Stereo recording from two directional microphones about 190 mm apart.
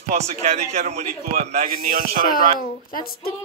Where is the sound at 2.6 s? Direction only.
50° left (ahead or behind).